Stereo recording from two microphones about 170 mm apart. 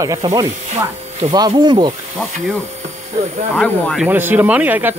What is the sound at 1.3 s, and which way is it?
Speech, 25° right (ahead or behind).